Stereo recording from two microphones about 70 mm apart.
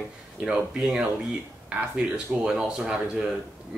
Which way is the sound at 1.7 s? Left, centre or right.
Centre.